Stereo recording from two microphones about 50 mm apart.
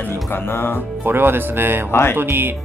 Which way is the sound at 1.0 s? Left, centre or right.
Right.